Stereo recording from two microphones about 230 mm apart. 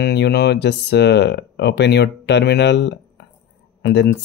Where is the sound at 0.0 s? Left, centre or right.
Left.